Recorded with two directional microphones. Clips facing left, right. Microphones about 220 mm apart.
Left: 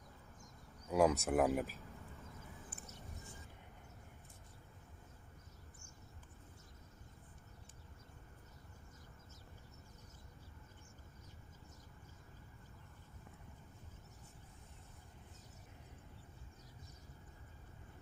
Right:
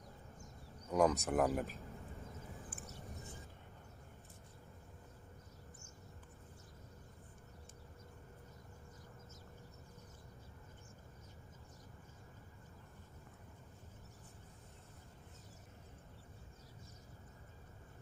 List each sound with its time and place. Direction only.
0.8 s speech: 10° left (ahead or behind)